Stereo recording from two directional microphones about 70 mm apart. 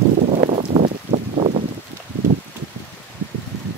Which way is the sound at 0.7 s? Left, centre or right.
Right.